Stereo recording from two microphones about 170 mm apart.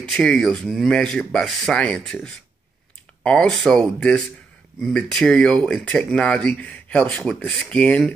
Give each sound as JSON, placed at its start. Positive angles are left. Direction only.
{"t": 0.1, "sound": "speech", "side_deg": 5}